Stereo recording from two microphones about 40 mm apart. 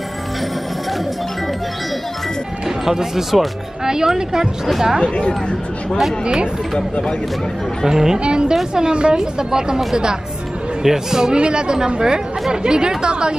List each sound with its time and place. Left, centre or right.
2.8 s speech: centre
6.2 s speech: right
7.8 s speech: centre
8.2 s speech: right
10.8 s speech: centre